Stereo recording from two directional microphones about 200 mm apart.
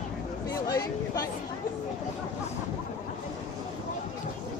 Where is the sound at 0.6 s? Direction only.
15° left (ahead or behind).